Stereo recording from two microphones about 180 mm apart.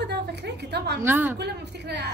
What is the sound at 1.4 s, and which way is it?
Speech, 70° right (ahead or behind).